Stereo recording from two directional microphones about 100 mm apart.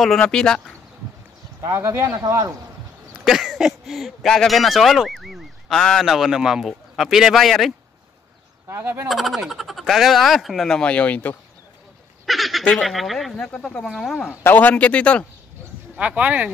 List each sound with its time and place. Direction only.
0.2 s a man's voice: 5° left (ahead or behind)
1.6 s speech: 30° right (ahead or behind)
2.0 s speech: 40° right (ahead or behind)
3.3 s speech: 5° right (ahead or behind)
8.6 s speech: 25° right (ahead or behind)
9.1 s speech: centre (ahead or behind)
12.3 s speech: centre (ahead or behind)
14.4 s a man's voice: 15° left (ahead or behind)
16.0 s speech: 15° right (ahead or behind)